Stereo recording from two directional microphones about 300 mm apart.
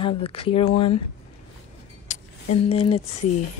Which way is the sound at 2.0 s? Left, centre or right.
Left.